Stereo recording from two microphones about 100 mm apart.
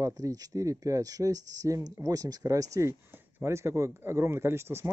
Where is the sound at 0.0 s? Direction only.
35° right (ahead or behind).